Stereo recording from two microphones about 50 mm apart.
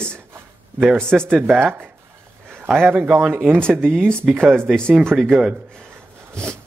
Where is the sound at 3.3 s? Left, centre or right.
Right.